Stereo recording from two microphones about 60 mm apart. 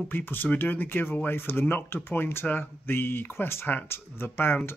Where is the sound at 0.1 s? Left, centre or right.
Left.